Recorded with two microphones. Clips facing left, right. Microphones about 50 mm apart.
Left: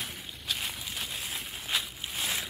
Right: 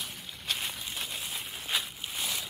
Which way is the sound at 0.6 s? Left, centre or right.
Centre.